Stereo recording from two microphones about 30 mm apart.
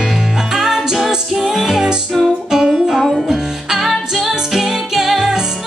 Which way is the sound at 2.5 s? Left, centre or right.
Right.